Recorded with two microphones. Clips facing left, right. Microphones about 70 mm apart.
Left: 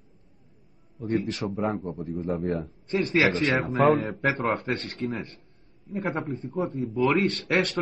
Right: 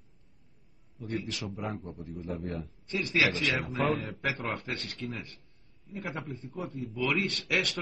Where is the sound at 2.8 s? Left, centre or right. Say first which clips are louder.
Left 5 dB; left.